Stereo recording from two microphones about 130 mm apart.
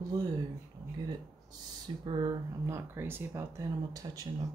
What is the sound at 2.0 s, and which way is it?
Speech, 40° right (ahead or behind).